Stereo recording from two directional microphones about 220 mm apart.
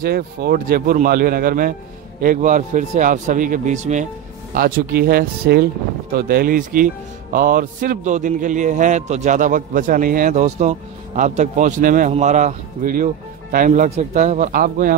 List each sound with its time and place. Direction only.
0.0 s a man's voice: 45° right (ahead or behind)